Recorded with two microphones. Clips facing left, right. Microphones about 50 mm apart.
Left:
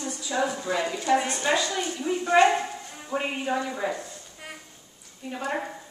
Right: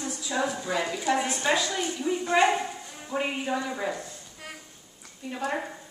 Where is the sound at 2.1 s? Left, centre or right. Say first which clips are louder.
Even; left.